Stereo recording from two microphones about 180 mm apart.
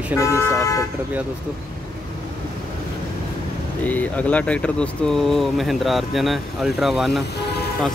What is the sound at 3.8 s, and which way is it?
Speech, 10° left (ahead or behind).